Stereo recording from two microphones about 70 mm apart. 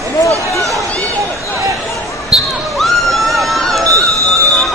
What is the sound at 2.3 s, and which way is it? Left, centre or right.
Basketball bounce, centre.